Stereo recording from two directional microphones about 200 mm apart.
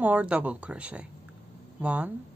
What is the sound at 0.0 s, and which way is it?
A woman's voice, 5° right (ahead or behind).